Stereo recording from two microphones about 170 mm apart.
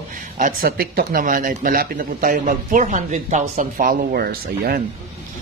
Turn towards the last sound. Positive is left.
turn(degrees=-60)  # may be behind; listen again after turning